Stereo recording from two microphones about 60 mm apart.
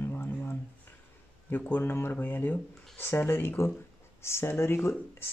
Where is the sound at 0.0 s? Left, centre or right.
Left.